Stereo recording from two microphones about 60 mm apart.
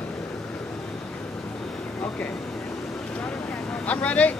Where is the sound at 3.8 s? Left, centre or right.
Left.